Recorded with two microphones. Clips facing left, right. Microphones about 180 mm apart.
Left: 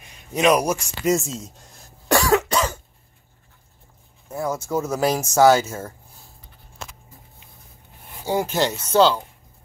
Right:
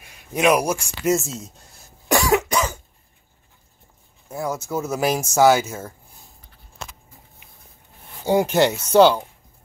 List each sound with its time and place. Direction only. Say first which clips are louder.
0.0 s speech: even; 10° right (ahead or behind)
2.0 s cough: even; 15° right (ahead or behind)
4.3 s speech: left 1 dB; 10° right (ahead or behind)
8.3 s speech: right 4 dB; 15° right (ahead or behind)